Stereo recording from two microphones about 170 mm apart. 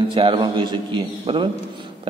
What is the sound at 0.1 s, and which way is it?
A man's voice, 30° right (ahead or behind).